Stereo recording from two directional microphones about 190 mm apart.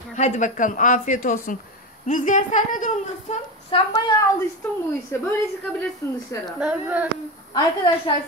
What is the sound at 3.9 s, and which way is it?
Speech, 20° left (ahead or behind).